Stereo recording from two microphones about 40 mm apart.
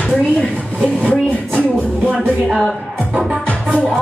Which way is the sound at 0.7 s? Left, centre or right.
Right.